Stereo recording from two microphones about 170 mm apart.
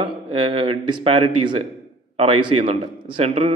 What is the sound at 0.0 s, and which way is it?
Speech, 30° right (ahead or behind).